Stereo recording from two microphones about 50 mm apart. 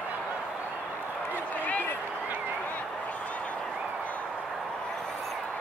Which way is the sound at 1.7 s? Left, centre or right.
Left.